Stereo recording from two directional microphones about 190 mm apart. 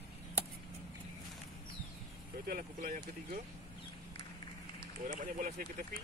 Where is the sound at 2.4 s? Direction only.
45° right (ahead or behind).